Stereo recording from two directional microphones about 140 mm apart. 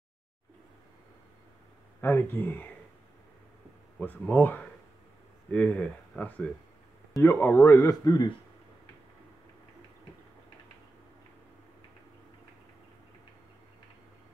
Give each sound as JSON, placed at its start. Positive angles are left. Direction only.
{"t": 2.0, "sound": "speech", "side_deg": 15}
{"t": 4.0, "sound": "speech", "side_deg": 10}